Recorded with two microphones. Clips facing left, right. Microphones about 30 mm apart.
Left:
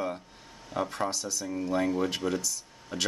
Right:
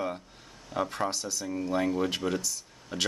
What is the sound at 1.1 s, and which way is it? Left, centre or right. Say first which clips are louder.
Speech: even; centre.